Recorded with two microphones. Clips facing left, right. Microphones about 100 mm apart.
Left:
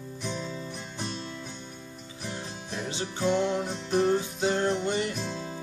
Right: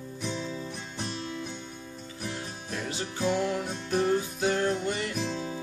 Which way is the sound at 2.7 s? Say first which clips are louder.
Left 1 dB; 25° left (ahead or behind).